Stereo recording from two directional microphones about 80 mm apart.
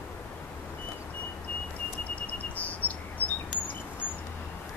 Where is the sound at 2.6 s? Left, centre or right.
Left.